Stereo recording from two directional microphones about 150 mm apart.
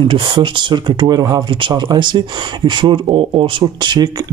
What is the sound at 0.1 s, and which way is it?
Speech, 30° right (ahead or behind).